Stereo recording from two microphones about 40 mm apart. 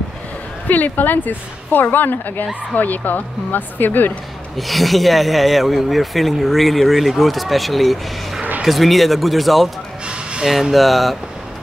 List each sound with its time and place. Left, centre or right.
0.7 s a woman's voice: left
4.6 s speech: centre
10.0 s a sound: right
10.4 s speech: centre